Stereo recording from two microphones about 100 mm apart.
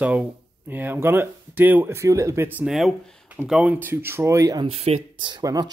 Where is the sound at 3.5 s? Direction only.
15° right (ahead or behind); by 4.7 s 35° right (ahead or behind).